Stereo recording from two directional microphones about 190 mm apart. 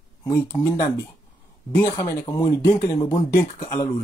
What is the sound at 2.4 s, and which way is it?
Speech, 25° left (ahead or behind).